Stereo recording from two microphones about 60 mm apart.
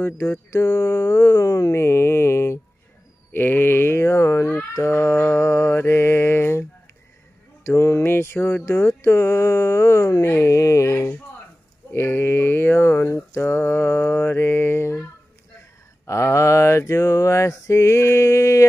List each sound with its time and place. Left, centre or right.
0.0 s speech: left
1.8 s mantra: left
3.3 s sheep: left
4.7 s mantra: left
7.6 s music: left
8.6 s speech: left
10.2 s speech: left
10.5 s a sound: left
16.1 s mantra: left